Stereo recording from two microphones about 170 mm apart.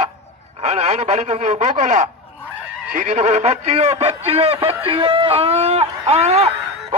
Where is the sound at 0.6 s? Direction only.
40° right (ahead or behind).